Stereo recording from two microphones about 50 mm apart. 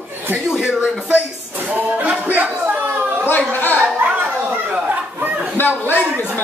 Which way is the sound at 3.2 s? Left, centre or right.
Left.